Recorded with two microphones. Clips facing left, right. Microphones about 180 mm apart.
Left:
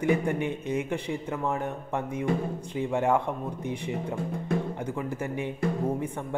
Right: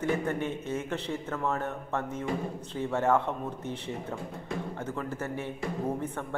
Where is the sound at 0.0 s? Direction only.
15° left (ahead or behind).